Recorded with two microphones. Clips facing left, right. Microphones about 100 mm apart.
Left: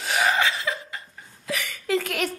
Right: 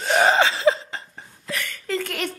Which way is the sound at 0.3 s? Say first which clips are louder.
Right 6 dB; 30° right (ahead or behind).